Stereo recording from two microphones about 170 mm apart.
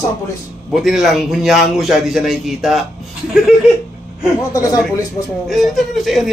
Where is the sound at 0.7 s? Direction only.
Centre (ahead or behind).